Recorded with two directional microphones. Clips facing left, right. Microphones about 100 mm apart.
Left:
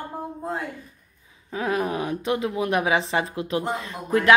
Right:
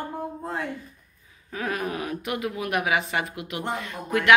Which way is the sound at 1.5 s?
25° left (ahead or behind).